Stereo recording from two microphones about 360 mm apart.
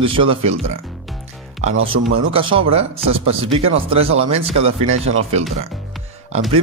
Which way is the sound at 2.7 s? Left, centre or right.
Centre.